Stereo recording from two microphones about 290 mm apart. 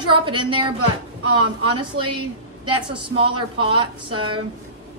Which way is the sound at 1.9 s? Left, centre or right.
Centre.